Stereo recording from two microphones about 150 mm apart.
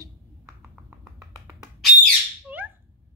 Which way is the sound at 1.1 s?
25° right (ahead or behind).